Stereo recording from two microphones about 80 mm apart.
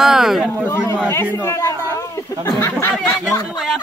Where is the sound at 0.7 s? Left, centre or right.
Left.